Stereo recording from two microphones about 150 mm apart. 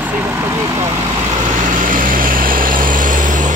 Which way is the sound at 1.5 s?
60° right (ahead or behind).